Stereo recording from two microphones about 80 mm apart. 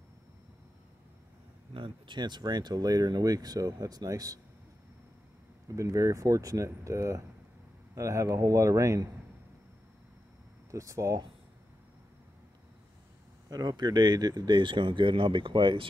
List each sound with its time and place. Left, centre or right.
1.7 s speech: right
5.7 s speech: right
10.7 s speech: right
13.5 s speech: right